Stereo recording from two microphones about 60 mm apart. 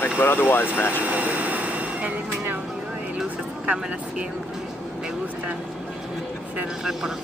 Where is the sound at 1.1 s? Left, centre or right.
Right.